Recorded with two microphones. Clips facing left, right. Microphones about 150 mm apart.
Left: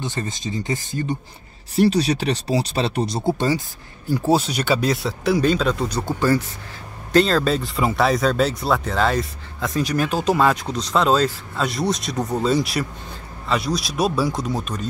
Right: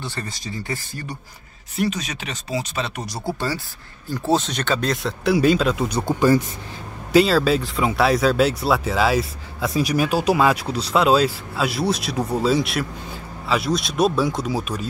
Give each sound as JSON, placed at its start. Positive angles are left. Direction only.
{"t": 0.0, "sound": "speech", "side_deg": 20}
{"t": 1.8, "sound": "speech", "side_deg": 35}